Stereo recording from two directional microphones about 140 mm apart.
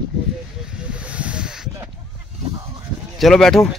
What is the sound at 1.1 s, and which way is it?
Snake, 10° right (ahead or behind).